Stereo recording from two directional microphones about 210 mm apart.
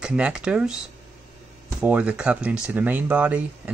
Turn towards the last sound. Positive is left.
turn(degrees=-5)  # may be behind; listen again after turning